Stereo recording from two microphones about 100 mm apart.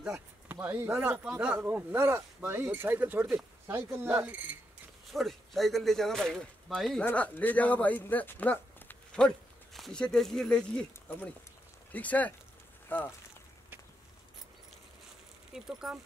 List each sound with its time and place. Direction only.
0.0 s a sound: 5° right (ahead or behind)
0.6 s speech: 20° right (ahead or behind)
5.1 s speech: centre (ahead or behind)
7.0 s speech: 15° left (ahead or behind)
11.9 s speech: 15° left (ahead or behind)
15.5 s speech: 5° right (ahead or behind)